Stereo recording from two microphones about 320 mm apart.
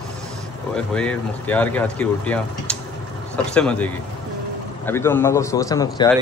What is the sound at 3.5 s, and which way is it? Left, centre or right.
A man's voice, centre.